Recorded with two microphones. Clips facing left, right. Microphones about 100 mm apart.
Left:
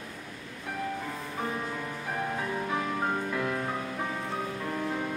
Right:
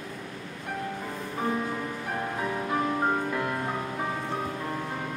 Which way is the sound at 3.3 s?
5° right (ahead or behind).